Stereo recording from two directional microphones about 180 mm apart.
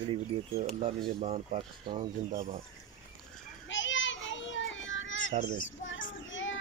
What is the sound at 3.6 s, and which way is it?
Children playing, 90° left.